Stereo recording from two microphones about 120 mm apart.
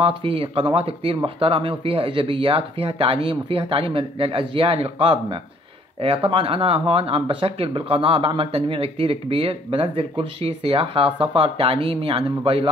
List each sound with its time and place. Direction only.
0.0 s speech: 50° right (ahead or behind)